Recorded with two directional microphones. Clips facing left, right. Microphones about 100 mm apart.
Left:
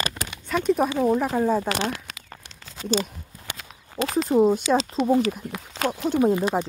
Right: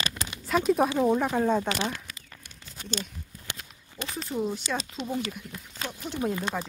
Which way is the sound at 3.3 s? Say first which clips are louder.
Left 4 dB; 90° left.